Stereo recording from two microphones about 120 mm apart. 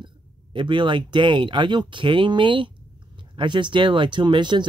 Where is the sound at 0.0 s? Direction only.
40° right (ahead or behind).